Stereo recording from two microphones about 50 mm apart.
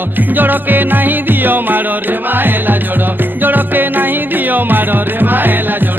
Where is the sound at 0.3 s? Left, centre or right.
Right.